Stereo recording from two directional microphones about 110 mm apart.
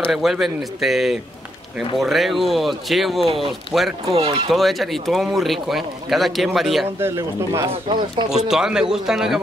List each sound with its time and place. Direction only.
0.1 s speech: 5° right (ahead or behind)
4.1 s speech: 50° right (ahead or behind)
4.5 s speech: centre (ahead or behind)
7.0 s speech: 25° right (ahead or behind)
8.3 s speech: 5° right (ahead or behind)